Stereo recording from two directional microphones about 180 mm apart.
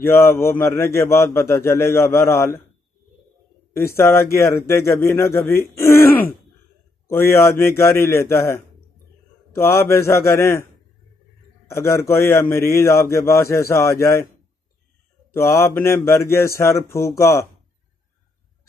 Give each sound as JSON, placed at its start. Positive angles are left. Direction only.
{"t": 0.0, "sound": "a man's voice", "side_deg": 15}
{"t": 3.7, "sound": "a man's voice", "side_deg": 15}
{"t": 11.7, "sound": "a man's voice", "side_deg": 15}
{"t": 15.3, "sound": "a man's voice", "side_deg": 15}